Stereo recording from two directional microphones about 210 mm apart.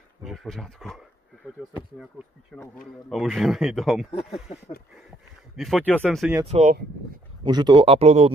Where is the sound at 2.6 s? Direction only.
5° left (ahead or behind).